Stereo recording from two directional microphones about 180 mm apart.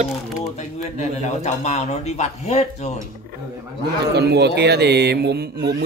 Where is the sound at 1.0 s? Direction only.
40° left (ahead or behind).